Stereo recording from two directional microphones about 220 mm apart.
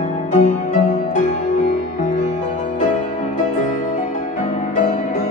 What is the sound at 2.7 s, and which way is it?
Music, 35° left (ahead or behind).